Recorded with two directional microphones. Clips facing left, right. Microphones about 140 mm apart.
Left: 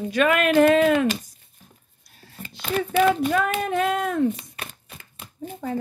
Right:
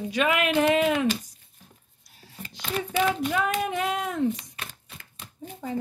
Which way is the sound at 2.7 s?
55° left (ahead or behind).